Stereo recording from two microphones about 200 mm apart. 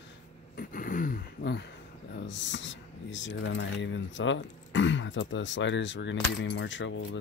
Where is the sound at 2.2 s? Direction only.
65° left (ahead or behind).